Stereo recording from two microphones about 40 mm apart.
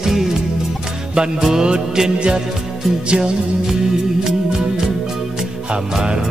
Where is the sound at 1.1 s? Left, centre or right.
Centre.